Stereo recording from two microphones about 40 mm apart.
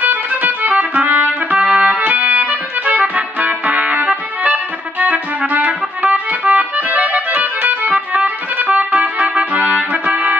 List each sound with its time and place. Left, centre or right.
0.0 s music: right
10.0 s trumpet: right